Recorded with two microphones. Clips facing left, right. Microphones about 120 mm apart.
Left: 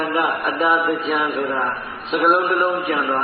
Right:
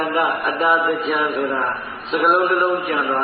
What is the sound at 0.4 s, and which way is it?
A man's voice, centre (ahead or behind).